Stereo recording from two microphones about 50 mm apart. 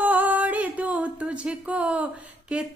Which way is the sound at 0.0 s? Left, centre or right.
Right.